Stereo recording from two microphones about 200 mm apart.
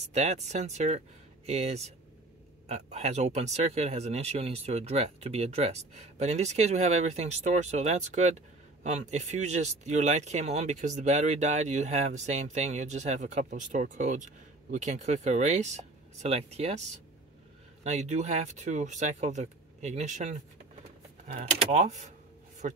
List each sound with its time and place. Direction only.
0.1 s speech: 35° right (ahead or behind)
17.8 s speech: 35° right (ahead or behind)